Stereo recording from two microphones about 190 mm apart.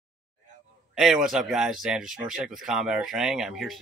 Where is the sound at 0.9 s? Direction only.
Centre (ahead or behind).